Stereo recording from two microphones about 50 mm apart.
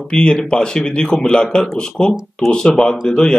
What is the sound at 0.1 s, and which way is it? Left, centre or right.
A man's voice, centre.